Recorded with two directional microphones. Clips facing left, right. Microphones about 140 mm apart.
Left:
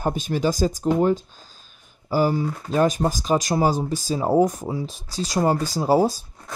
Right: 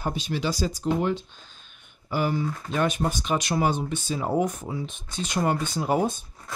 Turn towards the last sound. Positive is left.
turn(degrees=35)  # may be behind; listen again after turning